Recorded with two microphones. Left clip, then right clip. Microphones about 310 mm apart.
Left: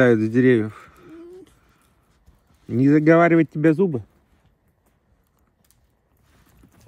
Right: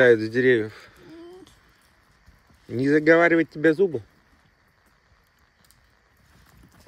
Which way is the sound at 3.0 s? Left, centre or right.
Left.